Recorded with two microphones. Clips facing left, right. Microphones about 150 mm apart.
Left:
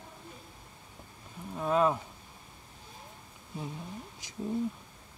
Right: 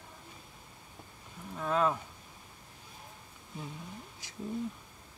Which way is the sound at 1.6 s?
15° left (ahead or behind).